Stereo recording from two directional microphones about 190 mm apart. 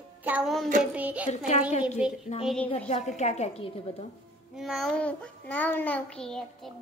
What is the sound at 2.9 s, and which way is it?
Speech, 35° left (ahead or behind).